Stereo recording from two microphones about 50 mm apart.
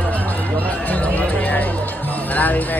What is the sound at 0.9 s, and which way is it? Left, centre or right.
Speech, left.